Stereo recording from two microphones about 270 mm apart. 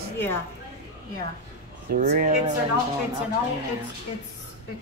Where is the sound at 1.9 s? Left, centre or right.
Right.